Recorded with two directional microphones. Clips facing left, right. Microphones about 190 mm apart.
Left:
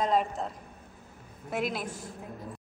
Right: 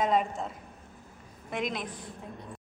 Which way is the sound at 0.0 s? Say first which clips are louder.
Even; centre (ahead or behind).